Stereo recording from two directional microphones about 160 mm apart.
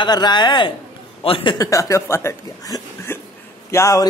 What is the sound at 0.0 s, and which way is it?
Speech, 25° left (ahead or behind).